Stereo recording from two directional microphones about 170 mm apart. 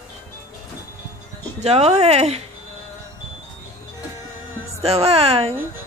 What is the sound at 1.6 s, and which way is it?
Speech, 40° right (ahead or behind).